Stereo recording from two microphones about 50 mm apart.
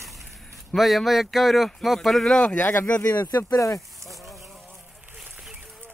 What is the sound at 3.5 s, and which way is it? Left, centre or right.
Speech, left.